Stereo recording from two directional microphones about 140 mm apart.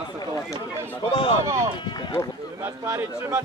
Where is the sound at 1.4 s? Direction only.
20° right (ahead or behind).